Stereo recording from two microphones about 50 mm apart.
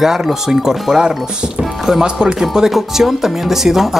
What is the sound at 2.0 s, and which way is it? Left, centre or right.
Speech, centre.